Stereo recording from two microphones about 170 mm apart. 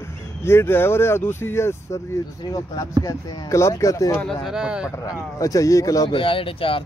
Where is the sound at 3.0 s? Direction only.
20° left (ahead or behind).